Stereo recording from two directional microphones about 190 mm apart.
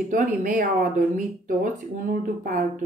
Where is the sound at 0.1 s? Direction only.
45° right (ahead or behind).